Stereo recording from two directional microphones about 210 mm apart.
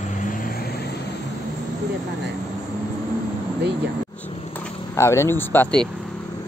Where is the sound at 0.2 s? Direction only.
40° left (ahead or behind).